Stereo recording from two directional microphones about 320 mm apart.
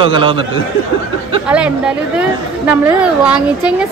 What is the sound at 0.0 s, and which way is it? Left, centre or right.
Speech, centre.